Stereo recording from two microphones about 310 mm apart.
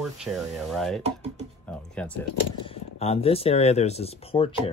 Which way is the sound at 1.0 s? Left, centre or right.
Centre.